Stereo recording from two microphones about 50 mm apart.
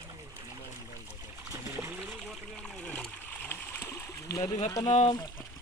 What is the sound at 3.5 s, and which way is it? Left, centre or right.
Splash, left.